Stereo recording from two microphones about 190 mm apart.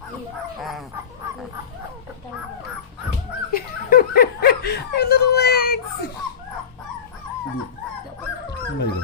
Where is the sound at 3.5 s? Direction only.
50° left (ahead or behind).